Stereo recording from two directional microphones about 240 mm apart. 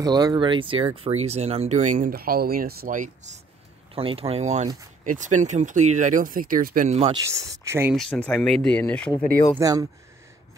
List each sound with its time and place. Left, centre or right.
0.0 s speech: centre; by 3.3 s right
3.9 s speech: right
7.2 s speech: centre
7.9 s speech: centre
9.6 s speech: centre